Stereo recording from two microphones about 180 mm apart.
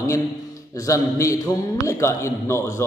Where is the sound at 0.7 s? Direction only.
15° left (ahead or behind).